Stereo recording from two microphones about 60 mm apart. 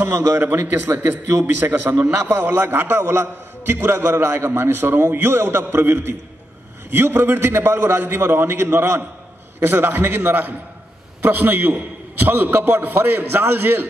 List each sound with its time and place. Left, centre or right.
0.4 s a man's voice: right